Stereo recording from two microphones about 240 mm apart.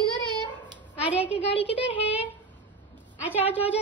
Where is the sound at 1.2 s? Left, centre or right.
Left.